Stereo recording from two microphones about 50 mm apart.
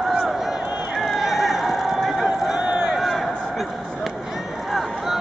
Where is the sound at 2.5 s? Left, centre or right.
Right.